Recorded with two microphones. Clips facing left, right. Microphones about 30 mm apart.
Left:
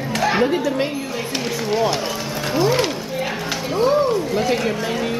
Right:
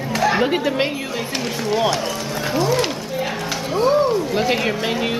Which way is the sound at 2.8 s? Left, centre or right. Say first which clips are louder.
Even; centre.